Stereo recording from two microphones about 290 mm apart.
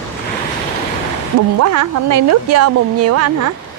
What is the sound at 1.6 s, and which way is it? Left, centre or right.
Speech, right.